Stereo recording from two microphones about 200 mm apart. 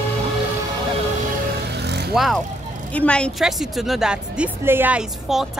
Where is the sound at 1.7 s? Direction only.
55° right (ahead or behind).